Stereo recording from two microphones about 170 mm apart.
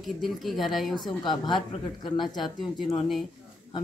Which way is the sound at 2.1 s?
Centre (ahead or behind).